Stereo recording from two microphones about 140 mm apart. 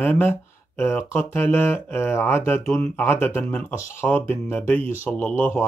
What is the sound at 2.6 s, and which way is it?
Speech, centre (ahead or behind).